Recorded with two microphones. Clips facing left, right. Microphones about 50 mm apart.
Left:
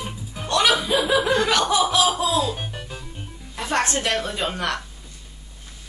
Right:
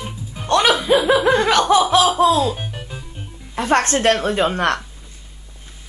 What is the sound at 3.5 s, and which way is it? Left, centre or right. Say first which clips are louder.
A woman's voice: right 6 dB; right.